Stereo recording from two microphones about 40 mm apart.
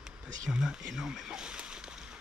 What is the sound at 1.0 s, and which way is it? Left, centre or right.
Speech, right.